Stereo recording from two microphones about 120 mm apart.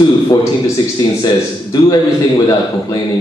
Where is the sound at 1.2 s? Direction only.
35° left (ahead or behind).